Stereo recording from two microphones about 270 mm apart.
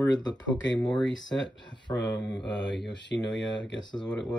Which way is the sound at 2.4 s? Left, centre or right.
Left.